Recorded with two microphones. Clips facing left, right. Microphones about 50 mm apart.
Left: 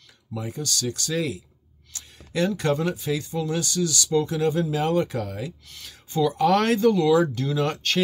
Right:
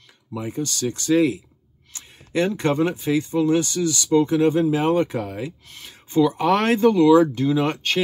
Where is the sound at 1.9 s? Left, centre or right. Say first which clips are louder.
Right 1 dB; right.